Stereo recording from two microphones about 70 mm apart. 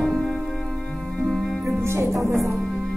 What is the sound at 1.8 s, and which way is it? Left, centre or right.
Music, right.